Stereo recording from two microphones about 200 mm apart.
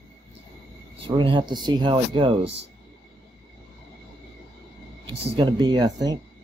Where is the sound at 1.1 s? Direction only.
25° right (ahead or behind).